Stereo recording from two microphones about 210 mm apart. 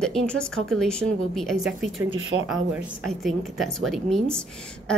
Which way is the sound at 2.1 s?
70° right (ahead or behind).